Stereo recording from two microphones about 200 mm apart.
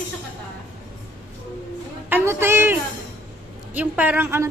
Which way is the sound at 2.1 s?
10° right (ahead or behind).